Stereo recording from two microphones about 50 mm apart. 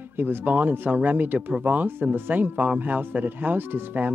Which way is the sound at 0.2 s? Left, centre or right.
Right.